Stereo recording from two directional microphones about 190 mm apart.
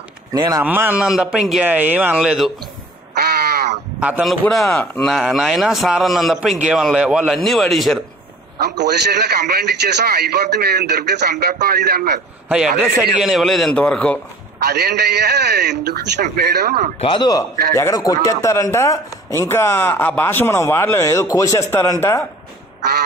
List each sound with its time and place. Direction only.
0.3 s speech: 20° right (ahead or behind); by 2.5 s centre (ahead or behind)
3.2 s crow: 55° right (ahead or behind)
4.0 s a man's voice: 5° right (ahead or behind)
8.5 s a man's voice: 60° right (ahead or behind)
13.2 s a man's voice: centre (ahead or behind)
14.6 s a man's voice: 55° right (ahead or behind)
17.0 s a man's voice: 25° left (ahead or behind)